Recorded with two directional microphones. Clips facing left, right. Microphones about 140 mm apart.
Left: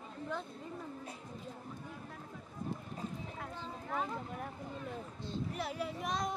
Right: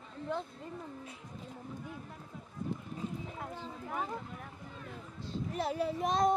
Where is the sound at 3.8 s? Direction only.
15° right (ahead or behind).